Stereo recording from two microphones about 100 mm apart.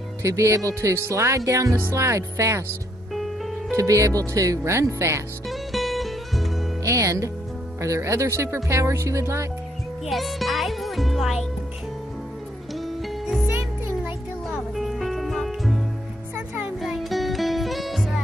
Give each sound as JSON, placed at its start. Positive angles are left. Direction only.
{"t": 0.2, "sound": "speech", "side_deg": -30}
{"t": 1.8, "sound": "music", "side_deg": -25}
{"t": 3.7, "sound": "speech", "side_deg": -30}
{"t": 5.5, "sound": "music", "side_deg": 0}
{"t": 6.8, "sound": "speech", "side_deg": -35}
{"t": 7.8, "sound": "music", "side_deg": -30}
{"t": 10.0, "sound": "music", "side_deg": 0}
{"t": 12.7, "sound": "music", "side_deg": 0}
{"t": 14.5, "sound": "music", "side_deg": 0}
{"t": 16.8, "sound": "music", "side_deg": 0}